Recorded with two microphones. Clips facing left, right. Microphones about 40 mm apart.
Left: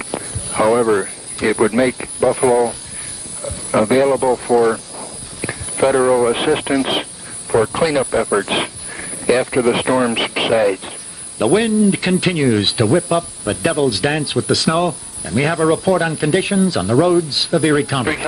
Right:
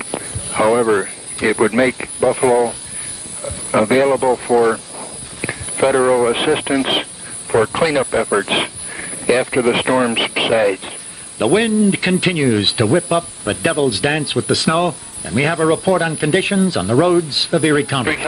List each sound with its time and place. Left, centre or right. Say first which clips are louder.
0.2 s a sound: even; right
1.7 s speech: right 1 dB; right
2.1 s speech: even; centre; by 4.3 s right
4.3 s speech: even; right
6.8 s radio: right 1 dB; right
7.6 s a sound: right 1 dB; right
7.9 s speech: even; right
10.0 s speech: even; centre
10.6 s speech: even; right
16.2 s speech: even; right
16.7 s speech: even; centre
17.0 s speech: right 1 dB; right